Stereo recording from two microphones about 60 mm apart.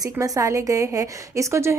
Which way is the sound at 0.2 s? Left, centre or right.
Right.